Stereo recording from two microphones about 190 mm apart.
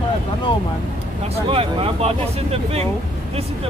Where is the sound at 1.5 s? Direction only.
30° right (ahead or behind).